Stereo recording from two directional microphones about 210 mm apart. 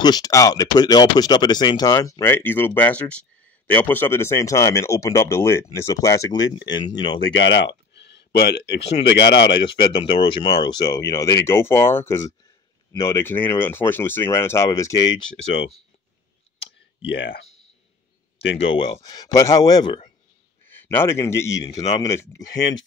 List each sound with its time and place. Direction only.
0.0 s speech: 20° left (ahead or behind)
7.3 s speech: 60° left (ahead or behind)
9.9 s speech: 25° left (ahead or behind)
16.6 s clicking: 60° left (ahead or behind)
18.7 s speech: 20° left (ahead or behind)